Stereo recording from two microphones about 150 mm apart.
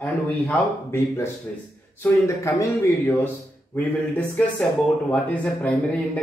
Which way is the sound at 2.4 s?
20° left (ahead or behind).